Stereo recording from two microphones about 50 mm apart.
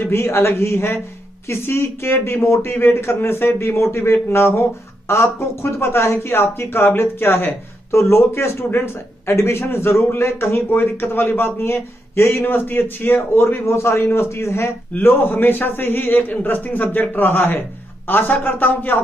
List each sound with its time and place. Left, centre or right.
0.1 s a man's voice: left
8.0 s a man's voice: left
13.7 s speech: left
15.0 s a man's voice: left